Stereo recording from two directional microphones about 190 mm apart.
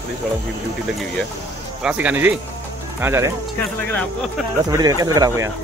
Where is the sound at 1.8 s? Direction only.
5° right (ahead or behind).